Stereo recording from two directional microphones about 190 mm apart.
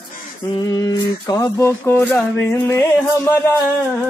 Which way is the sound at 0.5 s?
20° left (ahead or behind).